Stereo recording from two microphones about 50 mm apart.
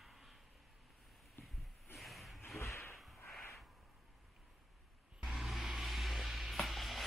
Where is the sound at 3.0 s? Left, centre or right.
Centre.